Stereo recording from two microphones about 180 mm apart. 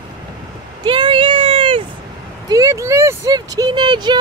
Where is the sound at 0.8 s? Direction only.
25° right (ahead or behind).